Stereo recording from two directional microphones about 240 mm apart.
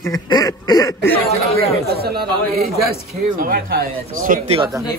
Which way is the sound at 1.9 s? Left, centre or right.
Right.